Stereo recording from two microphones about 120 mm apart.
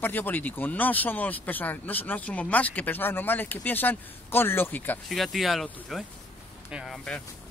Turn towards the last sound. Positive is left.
turn(degrees=5)  # may be behind; listen again after turning